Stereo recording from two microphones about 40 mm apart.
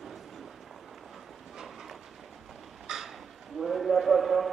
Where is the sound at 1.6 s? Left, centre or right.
Centre.